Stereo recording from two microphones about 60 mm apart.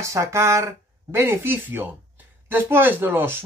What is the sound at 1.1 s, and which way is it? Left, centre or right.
Speech, right.